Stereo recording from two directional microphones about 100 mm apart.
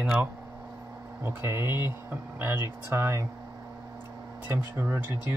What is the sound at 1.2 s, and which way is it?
Speech, 20° right (ahead or behind).